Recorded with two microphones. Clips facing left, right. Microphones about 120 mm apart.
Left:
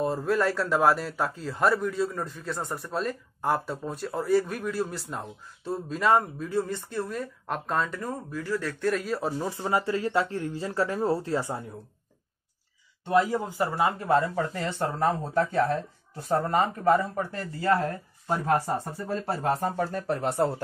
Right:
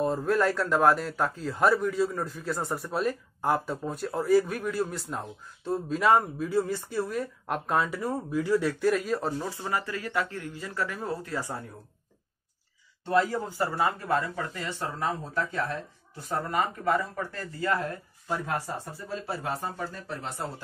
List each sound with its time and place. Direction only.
0.0 s a man's voice: centre (ahead or behind); by 8.9 s 15° right (ahead or behind)
8.9 s a man's voice: centre (ahead or behind)
9.4 s speech: 20° left (ahead or behind)
13.0 s speech: 15° left (ahead or behind)
14.3 s speech: 35° left (ahead or behind)
16.3 s speech: 30° left (ahead or behind)
17.6 s speech: 35° left (ahead or behind)
19.8 s speech: 60° left (ahead or behind)